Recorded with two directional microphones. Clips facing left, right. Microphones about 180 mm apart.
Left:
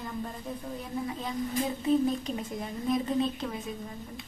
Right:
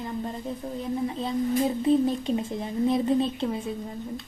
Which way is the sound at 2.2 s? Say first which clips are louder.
Right 6 dB; 25° right (ahead or behind).